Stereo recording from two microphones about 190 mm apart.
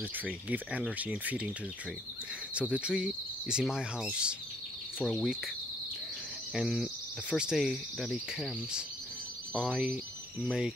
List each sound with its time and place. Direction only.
0.2 s speech: 10° right (ahead or behind)
2.5 s cricket: 5° right (ahead or behind)
6.5 s cricket: 5° right (ahead or behind)